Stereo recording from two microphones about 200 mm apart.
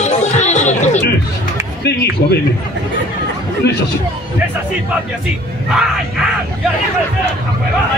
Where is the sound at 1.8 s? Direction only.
55° left (ahead or behind).